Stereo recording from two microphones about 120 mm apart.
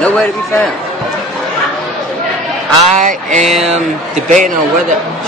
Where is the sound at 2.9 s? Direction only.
90° right.